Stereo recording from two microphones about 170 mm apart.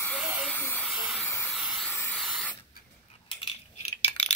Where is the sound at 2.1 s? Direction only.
5° right (ahead or behind).